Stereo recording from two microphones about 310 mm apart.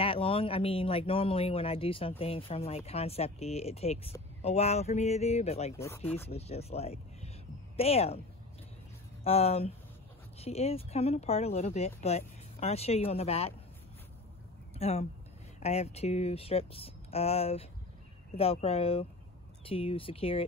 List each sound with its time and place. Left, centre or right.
0.0 s speech: centre
5.8 s speech: centre
6.2 s speech: centre
9.2 s speech: centre
14.8 s speech: centre